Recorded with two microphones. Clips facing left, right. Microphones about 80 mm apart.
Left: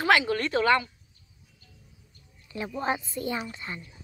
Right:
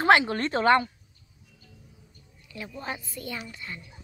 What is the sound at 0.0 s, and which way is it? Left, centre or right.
Speech, right.